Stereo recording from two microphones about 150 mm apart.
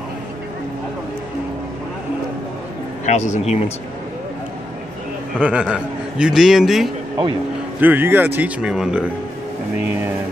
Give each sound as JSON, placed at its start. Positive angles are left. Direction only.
{"t": 3.1, "sound": "speech", "side_deg": 50}
{"t": 5.4, "sound": "a man's voice", "side_deg": -5}
{"t": 7.8, "sound": "speech", "side_deg": -15}